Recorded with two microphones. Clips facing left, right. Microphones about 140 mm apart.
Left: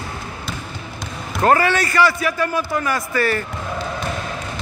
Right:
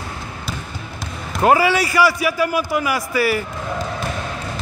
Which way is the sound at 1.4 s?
10° right (ahead or behind).